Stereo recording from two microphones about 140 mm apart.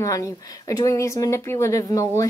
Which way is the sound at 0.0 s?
20° left (ahead or behind).